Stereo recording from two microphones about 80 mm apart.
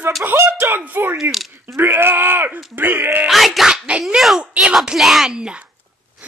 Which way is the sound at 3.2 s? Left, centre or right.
Centre.